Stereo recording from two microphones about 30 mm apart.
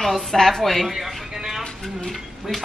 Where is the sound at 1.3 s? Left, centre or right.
Centre.